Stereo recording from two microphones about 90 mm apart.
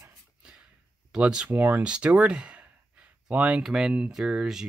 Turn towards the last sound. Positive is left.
turn(degrees=-10)  # may be behind; listen again after turning